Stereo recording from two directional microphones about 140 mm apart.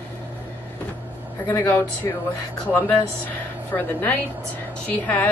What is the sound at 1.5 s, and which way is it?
Speech, 15° left (ahead or behind).